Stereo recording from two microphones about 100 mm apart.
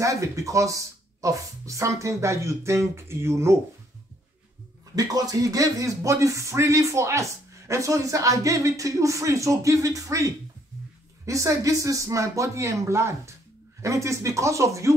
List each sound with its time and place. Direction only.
0.0 s speech: 30° right (ahead or behind)
4.9 s speech: 40° right (ahead or behind)